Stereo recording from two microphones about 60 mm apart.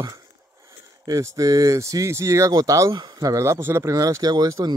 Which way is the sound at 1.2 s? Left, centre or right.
Right.